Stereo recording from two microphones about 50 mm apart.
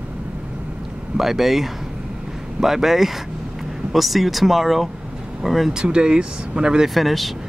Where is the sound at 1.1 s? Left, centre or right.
Centre.